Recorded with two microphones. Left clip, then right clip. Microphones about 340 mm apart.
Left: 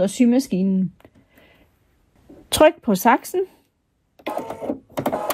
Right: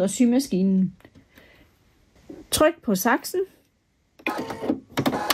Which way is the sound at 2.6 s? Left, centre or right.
Centre.